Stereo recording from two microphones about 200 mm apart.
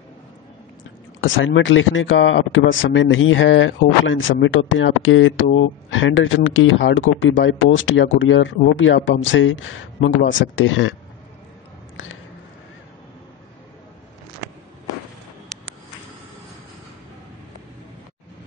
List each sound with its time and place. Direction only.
1.2 s speech: 70° left (ahead or behind)